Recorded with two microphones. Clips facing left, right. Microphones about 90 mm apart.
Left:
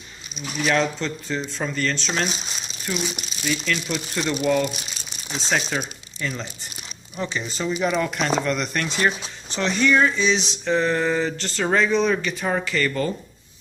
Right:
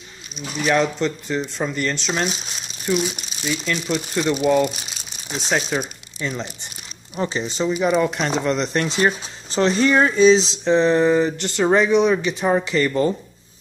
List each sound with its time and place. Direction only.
0.7 s speech: 10° right (ahead or behind)
7.2 s speech: 30° right (ahead or behind)
10.6 s speech: 25° right (ahead or behind)